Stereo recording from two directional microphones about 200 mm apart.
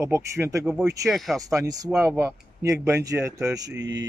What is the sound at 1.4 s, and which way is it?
Speech, 15° right (ahead or behind).